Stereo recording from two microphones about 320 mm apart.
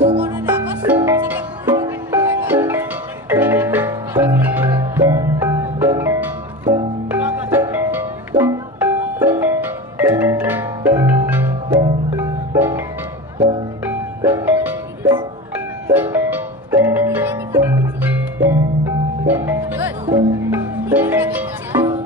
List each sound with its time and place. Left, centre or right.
0.0 s music: centre